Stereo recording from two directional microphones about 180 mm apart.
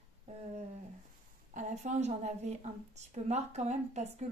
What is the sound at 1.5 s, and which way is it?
A woman's voice, 40° right (ahead or behind).